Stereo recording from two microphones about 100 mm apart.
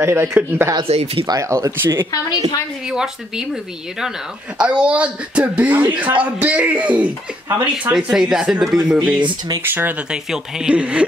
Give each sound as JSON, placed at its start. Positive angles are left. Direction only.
{"t": 0.0, "sound": "speech", "side_deg": -25}
{"t": 0.8, "sound": "speech", "side_deg": -90}
{"t": 1.2, "sound": "speech", "side_deg": -40}
{"t": 1.5, "sound": "speech", "side_deg": -25}
{"t": 2.9, "sound": "speech", "side_deg": -5}
{"t": 4.6, "sound": "speech", "side_deg": -10}
{"t": 9.6, "sound": "speech", "side_deg": -20}
{"t": 10.1, "sound": "speech", "side_deg": -10}